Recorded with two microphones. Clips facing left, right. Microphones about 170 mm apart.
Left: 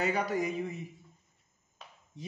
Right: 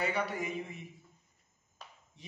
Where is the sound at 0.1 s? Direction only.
40° left (ahead or behind).